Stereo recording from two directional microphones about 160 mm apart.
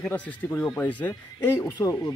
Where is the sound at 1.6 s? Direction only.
20° left (ahead or behind).